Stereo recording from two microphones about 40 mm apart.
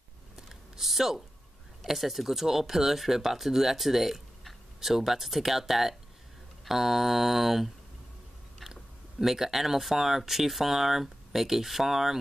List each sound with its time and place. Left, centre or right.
0.4 s typing: centre
1.9 s speech: centre
9.2 s speech: centre